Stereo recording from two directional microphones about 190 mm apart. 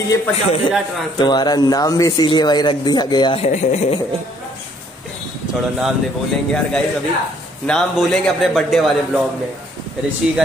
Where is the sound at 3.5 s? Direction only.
40° left (ahead or behind).